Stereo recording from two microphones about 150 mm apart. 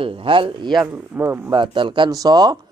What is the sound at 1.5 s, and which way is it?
A man's voice, 35° right (ahead or behind).